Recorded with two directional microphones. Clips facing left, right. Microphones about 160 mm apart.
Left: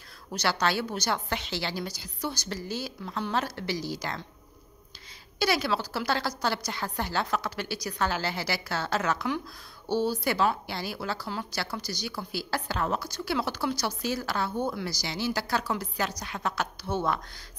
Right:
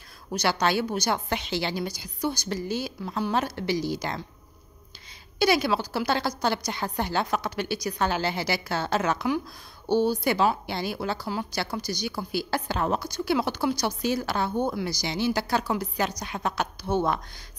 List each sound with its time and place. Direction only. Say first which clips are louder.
0.3 s a woman's voice: right 3 dB; 15° right (ahead or behind)
5.4 s a woman's voice: right 4 dB; 15° right (ahead or behind)